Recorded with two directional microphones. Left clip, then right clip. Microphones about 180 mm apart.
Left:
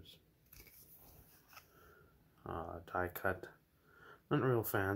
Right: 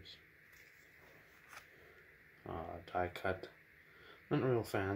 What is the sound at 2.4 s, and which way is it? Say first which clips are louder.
Speech: left 1 dB; 20° left (ahead or behind).